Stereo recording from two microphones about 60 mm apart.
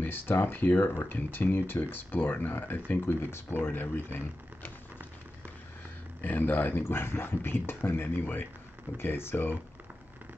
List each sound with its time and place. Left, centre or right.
0.0 s speech: left
6.2 s speech: left